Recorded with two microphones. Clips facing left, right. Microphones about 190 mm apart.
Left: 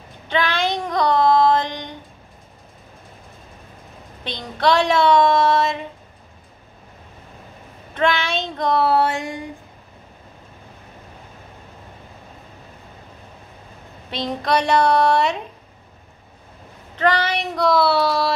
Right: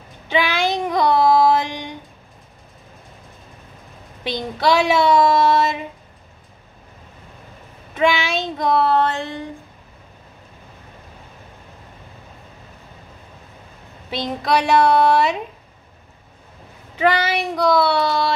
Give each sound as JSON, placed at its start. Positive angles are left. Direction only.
{"t": 0.3, "sound": "child singing", "side_deg": -10}
{"t": 4.2, "sound": "speech", "side_deg": -5}
{"t": 7.9, "sound": "speech", "side_deg": -5}
{"t": 14.1, "sound": "speech", "side_deg": 0}
{"t": 16.9, "sound": "speech", "side_deg": -5}